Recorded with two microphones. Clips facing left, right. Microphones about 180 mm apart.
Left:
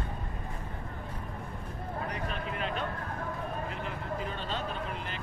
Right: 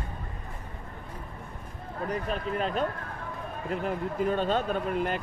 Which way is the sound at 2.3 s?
40° right (ahead or behind).